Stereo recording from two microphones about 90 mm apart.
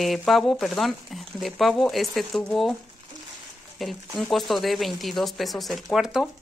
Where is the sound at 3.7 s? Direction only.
Centre (ahead or behind).